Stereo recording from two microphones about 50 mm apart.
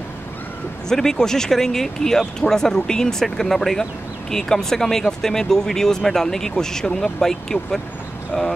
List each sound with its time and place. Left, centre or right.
0.8 s speech: centre
8.3 s speech: left